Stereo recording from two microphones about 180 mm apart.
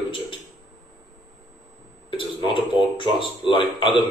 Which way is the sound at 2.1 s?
25° left (ahead or behind).